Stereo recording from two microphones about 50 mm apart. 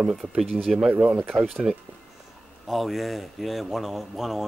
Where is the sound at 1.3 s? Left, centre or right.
Centre.